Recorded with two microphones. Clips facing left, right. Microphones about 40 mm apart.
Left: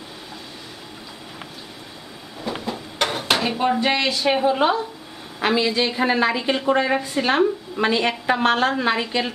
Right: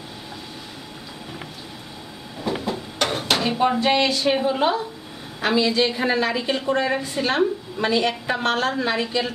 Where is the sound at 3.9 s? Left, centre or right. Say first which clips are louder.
Right 1 dB; centre.